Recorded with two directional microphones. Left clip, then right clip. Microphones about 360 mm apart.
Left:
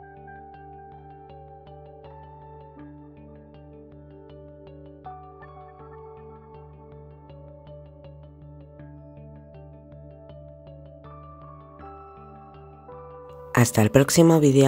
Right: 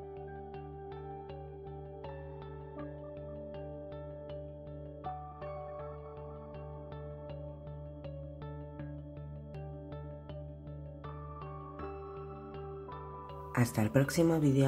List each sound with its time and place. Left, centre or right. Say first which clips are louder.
13.5 s speech: left 13 dB; left